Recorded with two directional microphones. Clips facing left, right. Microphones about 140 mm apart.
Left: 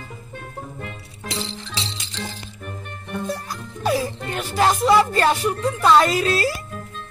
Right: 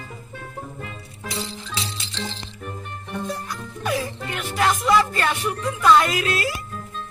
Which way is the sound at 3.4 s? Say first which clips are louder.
Left 4 dB; 35° left (ahead or behind).